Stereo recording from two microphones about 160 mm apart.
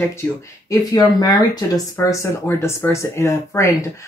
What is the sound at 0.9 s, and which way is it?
Speech, 25° left (ahead or behind).